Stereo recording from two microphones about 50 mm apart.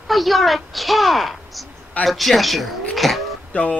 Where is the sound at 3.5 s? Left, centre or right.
Left.